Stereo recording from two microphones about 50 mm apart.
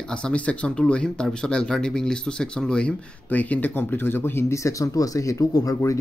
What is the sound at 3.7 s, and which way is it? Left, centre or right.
Speech, left.